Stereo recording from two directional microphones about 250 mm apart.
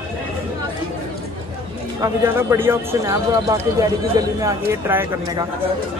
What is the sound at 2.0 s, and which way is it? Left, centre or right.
Speech, centre.